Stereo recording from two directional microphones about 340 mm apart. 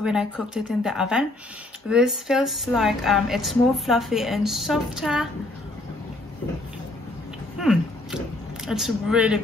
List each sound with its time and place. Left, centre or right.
0.0 s speech: centre
7.5 s biting: centre
8.6 s speech: centre